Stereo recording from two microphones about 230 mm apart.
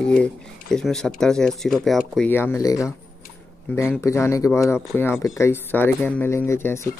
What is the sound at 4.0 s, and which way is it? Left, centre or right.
Speech, centre.